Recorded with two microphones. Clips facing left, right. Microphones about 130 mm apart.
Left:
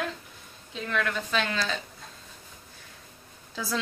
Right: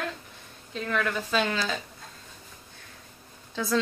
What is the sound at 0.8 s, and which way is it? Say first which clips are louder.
A woman's voice: right 1 dB; centre (ahead or behind).